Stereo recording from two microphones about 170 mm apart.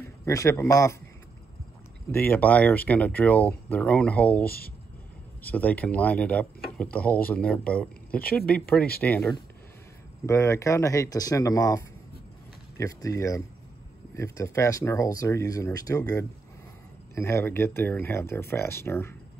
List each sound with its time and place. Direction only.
0.0 s a man's voice: 15° left (ahead or behind)
2.1 s speech: 10° left (ahead or behind)
4.5 s speech: 65° left (ahead or behind)
5.5 s speech: 10° left (ahead or behind)
8.2 s speech: 60° left (ahead or behind)
8.5 s speech: 5° left (ahead or behind)
10.2 s speech: 15° left (ahead or behind)